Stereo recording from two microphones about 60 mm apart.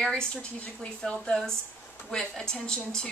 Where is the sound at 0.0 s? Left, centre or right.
Centre.